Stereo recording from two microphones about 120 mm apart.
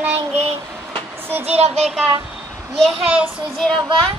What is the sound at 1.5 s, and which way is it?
Child singing, 60° right (ahead or behind).